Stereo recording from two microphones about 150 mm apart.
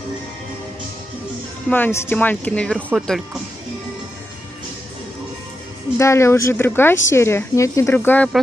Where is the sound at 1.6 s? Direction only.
15° left (ahead or behind).